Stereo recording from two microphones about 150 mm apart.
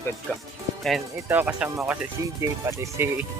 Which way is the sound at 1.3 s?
10° right (ahead or behind).